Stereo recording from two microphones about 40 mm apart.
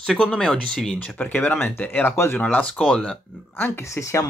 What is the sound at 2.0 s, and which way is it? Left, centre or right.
Speech, left.